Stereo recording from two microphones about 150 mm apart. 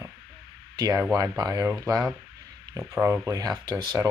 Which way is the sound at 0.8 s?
25° right (ahead or behind).